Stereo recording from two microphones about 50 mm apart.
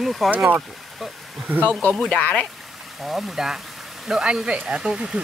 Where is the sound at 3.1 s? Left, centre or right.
Centre.